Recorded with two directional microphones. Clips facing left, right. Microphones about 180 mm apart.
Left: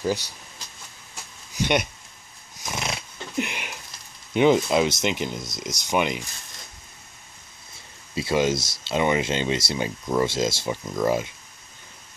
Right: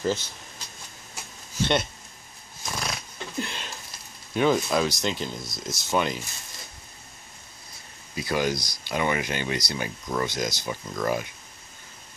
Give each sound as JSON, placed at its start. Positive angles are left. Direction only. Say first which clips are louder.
{"t": 1.6, "sound": "speech", "louder": "left 1 dB", "side_deg": 15}
{"t": 2.6, "sound": "a sound", "louder": "left 2 dB", "side_deg": 20}
{"t": 4.3, "sound": "speech", "louder": "left 4 dB", "side_deg": 20}
{"t": 8.1, "sound": "speech", "louder": "left 4 dB", "side_deg": 25}